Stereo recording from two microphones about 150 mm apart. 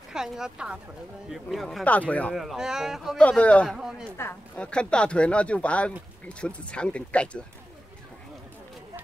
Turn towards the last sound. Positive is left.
turn(degrees=10)  # may be behind; listen again after turning